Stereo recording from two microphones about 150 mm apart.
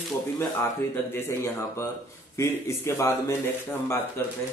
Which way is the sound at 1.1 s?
15° left (ahead or behind).